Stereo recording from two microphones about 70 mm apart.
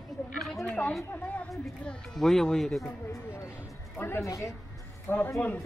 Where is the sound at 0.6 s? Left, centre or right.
Centre.